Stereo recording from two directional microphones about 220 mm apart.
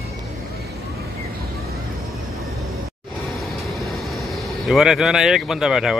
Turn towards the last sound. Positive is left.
turn(degrees=0)  # may be behind; listen again after turning